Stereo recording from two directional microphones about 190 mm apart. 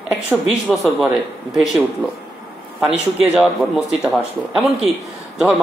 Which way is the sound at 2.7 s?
5° right (ahead or behind).